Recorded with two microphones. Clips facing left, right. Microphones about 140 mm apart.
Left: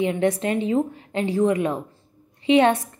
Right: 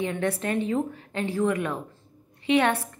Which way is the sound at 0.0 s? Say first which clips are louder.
Left 6 dB; 20° left (ahead or behind).